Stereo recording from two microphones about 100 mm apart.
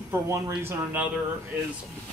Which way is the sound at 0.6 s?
25° right (ahead or behind).